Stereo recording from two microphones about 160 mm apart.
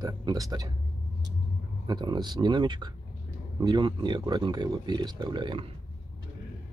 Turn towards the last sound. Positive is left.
turn(degrees=-30)  # may be behind; listen again after turning